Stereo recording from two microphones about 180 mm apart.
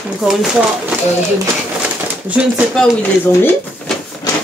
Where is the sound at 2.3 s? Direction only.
5° right (ahead or behind).